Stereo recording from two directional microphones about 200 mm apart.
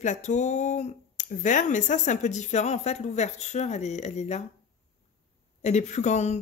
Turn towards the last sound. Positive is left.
turn(degrees=35)  # may be behind; listen again after turning